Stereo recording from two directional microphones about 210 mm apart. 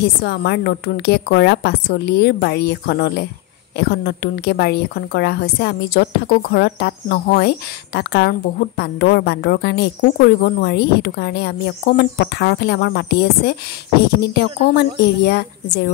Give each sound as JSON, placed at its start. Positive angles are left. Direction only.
{"t": 0.0, "sound": "a woman's voice", "side_deg": 50}